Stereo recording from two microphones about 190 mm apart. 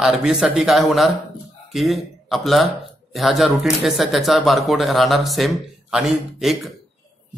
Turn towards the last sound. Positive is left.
turn(degrees=0)  # may be behind; listen again after turning